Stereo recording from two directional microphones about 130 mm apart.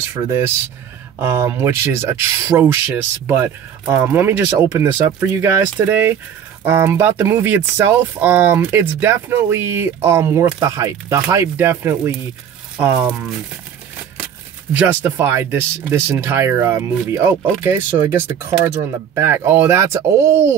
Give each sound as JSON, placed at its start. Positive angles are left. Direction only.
{"t": 0.1, "sound": "speech", "side_deg": -25}
{"t": 14.7, "sound": "speech", "side_deg": -10}